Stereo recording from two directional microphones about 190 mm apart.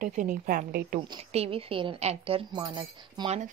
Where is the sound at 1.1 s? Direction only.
30° right (ahead or behind).